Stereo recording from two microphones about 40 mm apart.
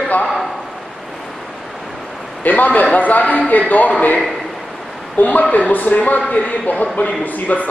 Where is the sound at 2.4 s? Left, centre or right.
Left.